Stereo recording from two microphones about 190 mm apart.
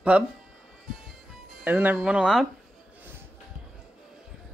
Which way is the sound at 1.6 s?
5° right (ahead or behind).